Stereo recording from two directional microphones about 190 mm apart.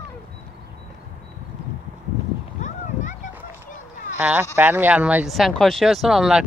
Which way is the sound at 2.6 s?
40° left (ahead or behind).